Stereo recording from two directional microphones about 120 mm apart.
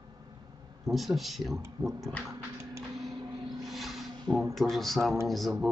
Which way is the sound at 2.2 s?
25° right (ahead or behind).